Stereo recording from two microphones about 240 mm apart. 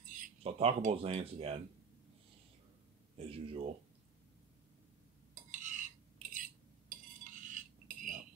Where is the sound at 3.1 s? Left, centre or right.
Right.